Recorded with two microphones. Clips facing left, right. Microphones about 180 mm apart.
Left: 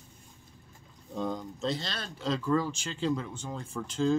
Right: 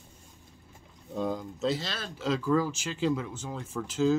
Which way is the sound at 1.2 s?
5° right (ahead or behind).